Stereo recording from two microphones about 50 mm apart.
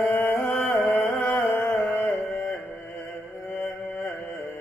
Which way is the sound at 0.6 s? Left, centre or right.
Left.